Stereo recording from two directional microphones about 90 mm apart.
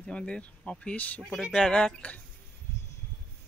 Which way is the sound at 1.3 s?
5° left (ahead or behind).